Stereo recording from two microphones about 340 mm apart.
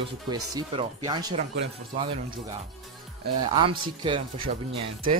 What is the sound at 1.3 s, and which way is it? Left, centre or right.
Speech, right.